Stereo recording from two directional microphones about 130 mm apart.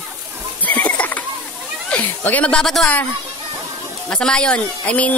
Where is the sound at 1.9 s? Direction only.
10° left (ahead or behind).